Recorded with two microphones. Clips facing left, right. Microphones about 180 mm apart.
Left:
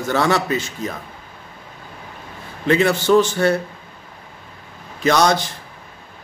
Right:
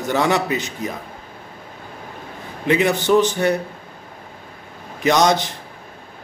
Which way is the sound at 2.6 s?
15° right (ahead or behind).